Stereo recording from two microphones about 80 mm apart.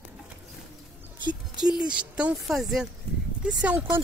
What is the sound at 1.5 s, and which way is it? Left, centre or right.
Speech, centre.